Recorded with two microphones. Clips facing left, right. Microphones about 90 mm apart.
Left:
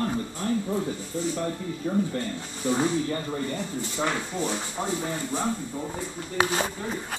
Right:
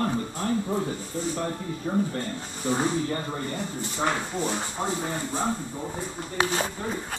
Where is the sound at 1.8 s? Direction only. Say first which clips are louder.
Even; 20° right (ahead or behind).